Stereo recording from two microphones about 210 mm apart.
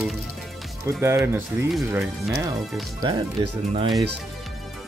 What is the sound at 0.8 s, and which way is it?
Speech, 10° right (ahead or behind).